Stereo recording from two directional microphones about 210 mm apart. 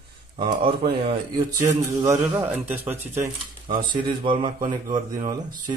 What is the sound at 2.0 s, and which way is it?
A man's voice, 10° right (ahead or behind).